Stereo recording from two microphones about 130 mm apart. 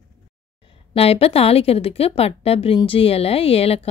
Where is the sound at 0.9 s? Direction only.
50° left (ahead or behind).